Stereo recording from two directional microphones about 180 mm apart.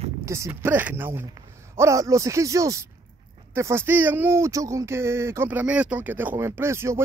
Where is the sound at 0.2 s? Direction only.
15° right (ahead or behind).